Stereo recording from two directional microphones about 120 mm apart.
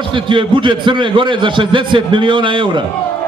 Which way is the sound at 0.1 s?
45° right (ahead or behind).